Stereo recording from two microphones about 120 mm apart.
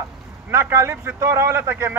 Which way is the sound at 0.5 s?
20° right (ahead or behind).